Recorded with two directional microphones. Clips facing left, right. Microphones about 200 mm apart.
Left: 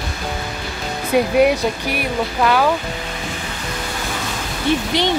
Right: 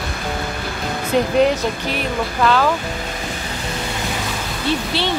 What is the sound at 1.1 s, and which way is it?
Speech, 10° left (ahead or behind).